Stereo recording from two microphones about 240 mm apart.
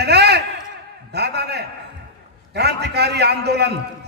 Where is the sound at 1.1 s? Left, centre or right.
Right.